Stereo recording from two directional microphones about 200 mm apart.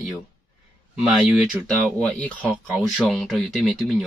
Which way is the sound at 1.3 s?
Centre (ahead or behind).